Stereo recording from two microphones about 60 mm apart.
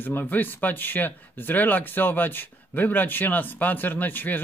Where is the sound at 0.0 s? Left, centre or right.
Left.